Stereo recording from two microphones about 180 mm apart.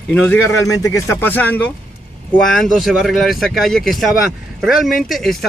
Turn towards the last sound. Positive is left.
turn(degrees=0)  # may be behind; listen again after turning